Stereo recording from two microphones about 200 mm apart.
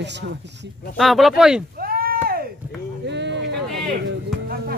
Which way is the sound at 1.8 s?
50° right (ahead or behind).